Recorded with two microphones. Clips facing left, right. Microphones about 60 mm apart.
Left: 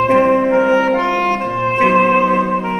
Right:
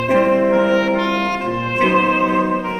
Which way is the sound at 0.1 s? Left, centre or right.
Centre.